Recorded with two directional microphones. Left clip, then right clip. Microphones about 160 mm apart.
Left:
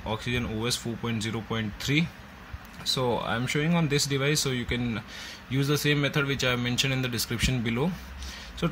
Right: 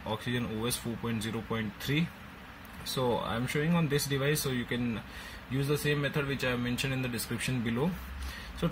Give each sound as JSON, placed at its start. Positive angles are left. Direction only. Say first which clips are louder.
{"t": 0.0, "sound": "speech", "louder": "left 4 dB", "side_deg": 15}
{"t": 5.7, "sound": "speech", "louder": "left 5 dB", "side_deg": 30}